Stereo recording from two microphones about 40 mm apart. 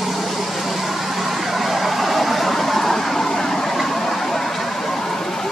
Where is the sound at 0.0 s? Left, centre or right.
Centre.